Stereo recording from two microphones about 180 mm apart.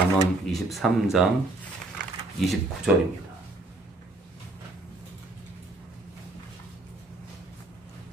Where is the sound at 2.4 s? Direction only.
Centre (ahead or behind).